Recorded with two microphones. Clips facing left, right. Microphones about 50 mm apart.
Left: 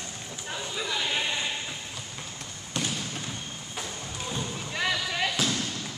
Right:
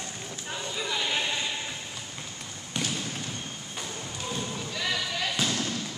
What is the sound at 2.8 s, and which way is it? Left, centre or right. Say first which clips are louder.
Basketball bounce: left 1 dB; centre.